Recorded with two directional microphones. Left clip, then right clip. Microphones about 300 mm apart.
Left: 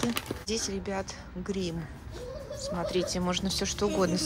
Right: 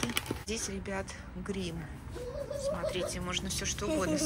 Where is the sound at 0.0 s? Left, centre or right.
Centre.